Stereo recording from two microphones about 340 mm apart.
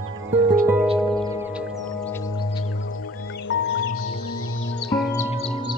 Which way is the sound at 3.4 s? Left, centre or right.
Left.